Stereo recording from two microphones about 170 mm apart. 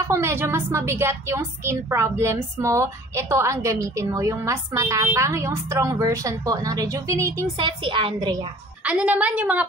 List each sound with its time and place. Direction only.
0.1 s a woman's voice: 15° right (ahead or behind)
7.5 s a woman's voice: 30° right (ahead or behind)
8.8 s a woman's voice: 10° right (ahead or behind)